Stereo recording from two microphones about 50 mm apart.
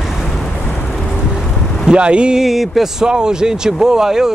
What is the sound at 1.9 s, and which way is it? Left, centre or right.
Speech, right.